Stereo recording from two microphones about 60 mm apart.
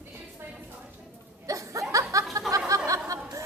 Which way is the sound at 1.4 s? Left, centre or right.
Right.